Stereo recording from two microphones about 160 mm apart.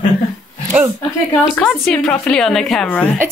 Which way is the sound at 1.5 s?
Centre (ahead or behind).